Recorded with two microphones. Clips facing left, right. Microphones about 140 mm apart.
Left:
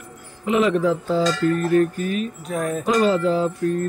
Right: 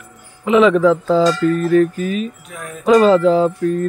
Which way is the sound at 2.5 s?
40° left (ahead or behind).